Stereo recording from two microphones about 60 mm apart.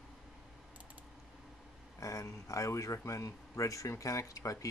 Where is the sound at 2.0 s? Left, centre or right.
Left.